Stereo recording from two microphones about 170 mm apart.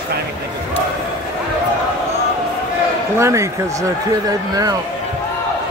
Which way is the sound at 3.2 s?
15° right (ahead or behind).